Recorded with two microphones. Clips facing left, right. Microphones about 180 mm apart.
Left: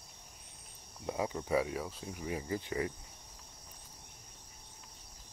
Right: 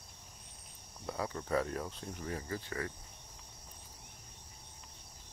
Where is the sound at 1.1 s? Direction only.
15° left (ahead or behind).